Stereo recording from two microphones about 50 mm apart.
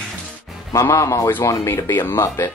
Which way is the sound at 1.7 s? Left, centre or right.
Left.